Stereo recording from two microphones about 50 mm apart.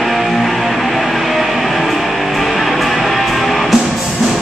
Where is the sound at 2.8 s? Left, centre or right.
Centre.